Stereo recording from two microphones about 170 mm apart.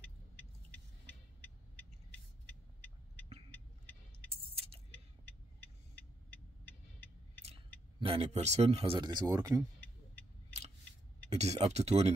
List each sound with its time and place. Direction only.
4.3 s keys jangling: 35° right (ahead or behind)
8.0 s speech: 35° right (ahead or behind); by 9.6 s 20° right (ahead or behind)
11.2 s speech: 40° right (ahead or behind)